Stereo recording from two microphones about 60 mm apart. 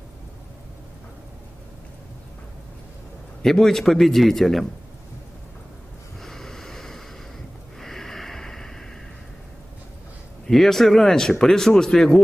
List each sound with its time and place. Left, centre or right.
3.4 s speech: centre
6.2 s a sound: centre
10.4 s speech: centre